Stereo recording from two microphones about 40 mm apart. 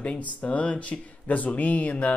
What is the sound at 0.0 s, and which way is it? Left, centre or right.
Speech, left.